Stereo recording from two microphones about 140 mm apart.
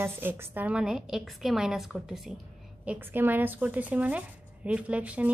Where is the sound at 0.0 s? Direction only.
15° right (ahead or behind).